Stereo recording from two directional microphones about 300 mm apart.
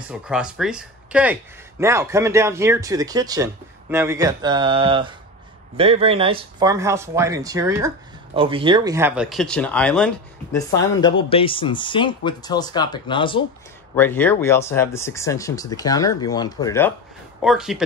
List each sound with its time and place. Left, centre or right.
0.1 s speech: centre
11.2 s speech: centre
17.4 s speech: centre